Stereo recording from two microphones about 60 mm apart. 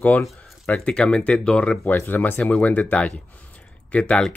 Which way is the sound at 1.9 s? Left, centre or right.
Left.